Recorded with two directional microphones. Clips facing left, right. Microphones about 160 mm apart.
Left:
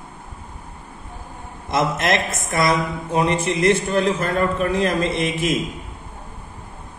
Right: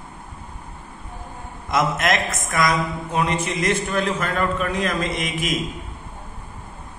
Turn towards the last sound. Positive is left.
turn(degrees=30)  # may be behind; listen again after turning